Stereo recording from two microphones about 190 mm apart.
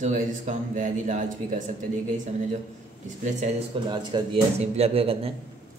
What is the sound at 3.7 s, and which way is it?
A man's voice, 30° right (ahead or behind).